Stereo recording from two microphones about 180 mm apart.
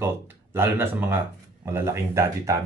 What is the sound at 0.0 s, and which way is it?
Speech, 15° right (ahead or behind).